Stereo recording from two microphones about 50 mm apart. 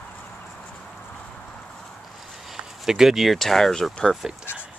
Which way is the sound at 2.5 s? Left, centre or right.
Centre.